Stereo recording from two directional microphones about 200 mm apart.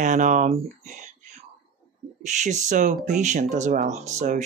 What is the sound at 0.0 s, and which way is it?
Speech, 40° right (ahead or behind).